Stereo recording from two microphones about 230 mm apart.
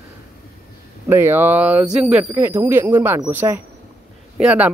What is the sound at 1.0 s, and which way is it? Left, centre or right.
Speech, centre.